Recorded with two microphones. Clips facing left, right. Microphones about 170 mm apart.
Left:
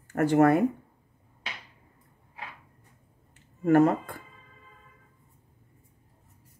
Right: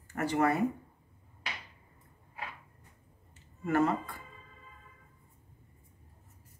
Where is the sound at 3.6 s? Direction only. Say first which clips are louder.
Left 8 dB; 50° left (ahead or behind).